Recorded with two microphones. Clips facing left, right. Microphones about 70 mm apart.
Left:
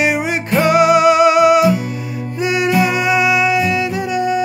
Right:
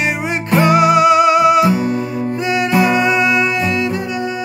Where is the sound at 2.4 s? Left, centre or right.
Centre.